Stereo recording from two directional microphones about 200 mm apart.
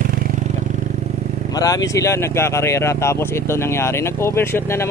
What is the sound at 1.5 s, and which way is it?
Speech, 20° left (ahead or behind).